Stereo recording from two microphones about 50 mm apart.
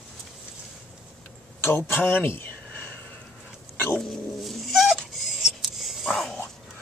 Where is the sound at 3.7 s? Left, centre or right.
Left.